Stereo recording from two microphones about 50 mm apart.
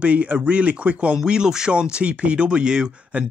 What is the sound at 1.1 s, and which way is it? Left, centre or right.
Speech, centre.